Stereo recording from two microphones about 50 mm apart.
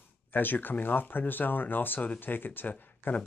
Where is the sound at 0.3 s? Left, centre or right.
Left.